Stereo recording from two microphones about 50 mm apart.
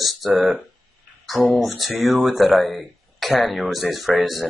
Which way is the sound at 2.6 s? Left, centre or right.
Centre.